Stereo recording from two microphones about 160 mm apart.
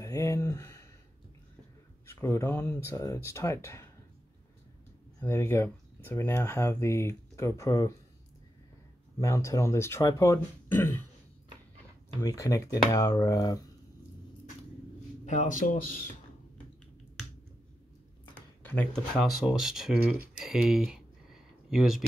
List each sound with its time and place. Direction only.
0.0 s a sound: 20° left (ahead or behind)
2.0 s speech: 20° left (ahead or behind)
5.2 s speech: 15° left (ahead or behind)
9.2 s speech: 20° left (ahead or behind)
12.2 s speech: 20° left (ahead or behind)
15.2 s speech: 50° left (ahead or behind)
18.6 s speech: 10° left (ahead or behind)